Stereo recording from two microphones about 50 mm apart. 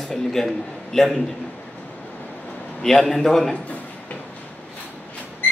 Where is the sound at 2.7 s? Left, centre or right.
Centre.